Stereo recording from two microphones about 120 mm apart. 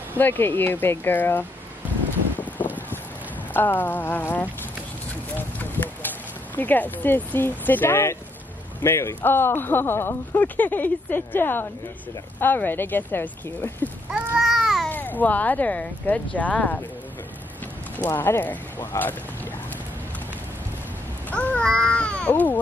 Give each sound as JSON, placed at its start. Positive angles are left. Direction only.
{"t": 0.2, "sound": "speech", "side_deg": 15}
{"t": 3.5, "sound": "speech", "side_deg": 15}
{"t": 5.6, "sound": "speech", "side_deg": 15}
{"t": 14.1, "sound": "a sound", "side_deg": -15}
{"t": 14.4, "sound": "a sound", "side_deg": 0}
{"t": 14.9, "sound": "speech", "side_deg": 15}
{"t": 17.9, "sound": "speech", "side_deg": 15}
{"t": 21.3, "sound": "a child's voice", "side_deg": 10}